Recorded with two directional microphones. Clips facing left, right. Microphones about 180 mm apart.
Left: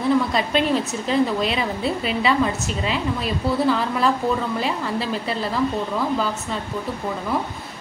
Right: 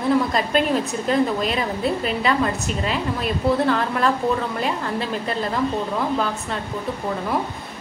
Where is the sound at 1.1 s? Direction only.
45° right (ahead or behind).